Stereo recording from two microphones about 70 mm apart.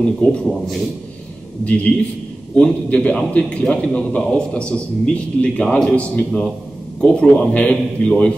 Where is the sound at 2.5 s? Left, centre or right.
Centre.